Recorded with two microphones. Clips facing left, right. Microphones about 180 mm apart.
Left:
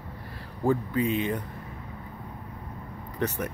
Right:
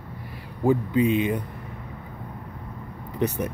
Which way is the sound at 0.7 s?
20° right (ahead or behind).